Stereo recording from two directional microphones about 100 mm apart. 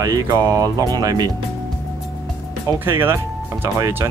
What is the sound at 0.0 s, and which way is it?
Speech, 40° right (ahead or behind).